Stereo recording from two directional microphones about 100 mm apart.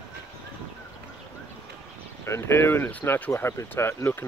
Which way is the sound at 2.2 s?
25° left (ahead or behind).